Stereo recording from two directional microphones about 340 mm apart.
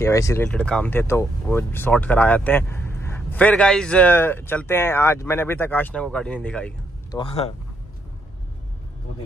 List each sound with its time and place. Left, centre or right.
0.0 s speech: centre
7.2 s speech: centre